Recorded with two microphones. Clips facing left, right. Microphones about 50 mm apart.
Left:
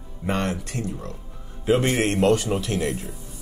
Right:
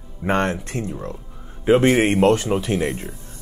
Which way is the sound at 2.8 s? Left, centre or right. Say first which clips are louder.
Right 2 dB; centre.